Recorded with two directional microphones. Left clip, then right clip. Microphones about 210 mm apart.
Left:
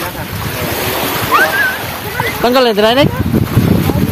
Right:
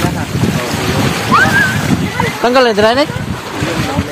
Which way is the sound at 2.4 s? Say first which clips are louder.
Right 1 dB; 10° left (ahead or behind).